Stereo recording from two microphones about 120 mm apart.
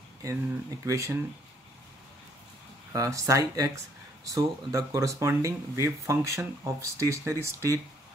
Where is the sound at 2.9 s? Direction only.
25° right (ahead or behind).